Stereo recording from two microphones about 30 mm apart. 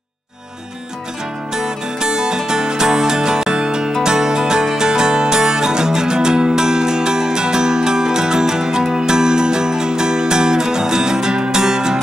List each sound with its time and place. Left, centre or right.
1.5 s music: right